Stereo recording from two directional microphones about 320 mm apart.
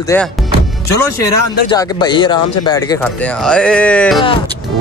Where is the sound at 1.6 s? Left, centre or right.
Centre.